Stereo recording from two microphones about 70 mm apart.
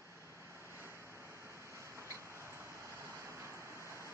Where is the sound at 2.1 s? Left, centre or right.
Right.